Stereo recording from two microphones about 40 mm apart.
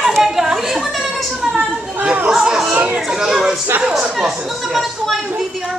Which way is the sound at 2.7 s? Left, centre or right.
Right.